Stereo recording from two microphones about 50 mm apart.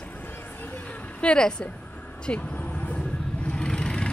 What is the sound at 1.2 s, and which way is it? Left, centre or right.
Speech, centre.